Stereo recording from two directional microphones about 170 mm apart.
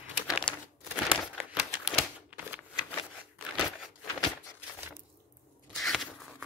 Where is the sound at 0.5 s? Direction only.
30° left (ahead or behind).